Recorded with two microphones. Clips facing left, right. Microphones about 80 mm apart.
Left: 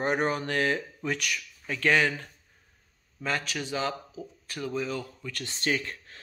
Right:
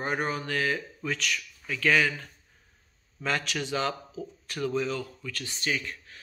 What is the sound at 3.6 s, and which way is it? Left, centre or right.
Speech, left.